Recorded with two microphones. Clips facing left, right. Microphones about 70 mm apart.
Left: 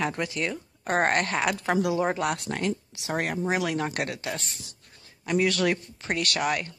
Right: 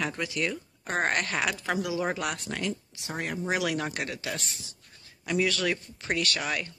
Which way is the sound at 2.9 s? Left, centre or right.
Left.